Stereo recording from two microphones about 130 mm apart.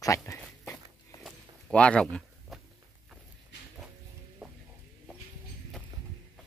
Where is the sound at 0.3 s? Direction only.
25° left (ahead or behind).